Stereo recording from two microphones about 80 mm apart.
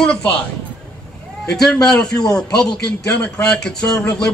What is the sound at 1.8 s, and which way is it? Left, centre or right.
A man's voice, centre.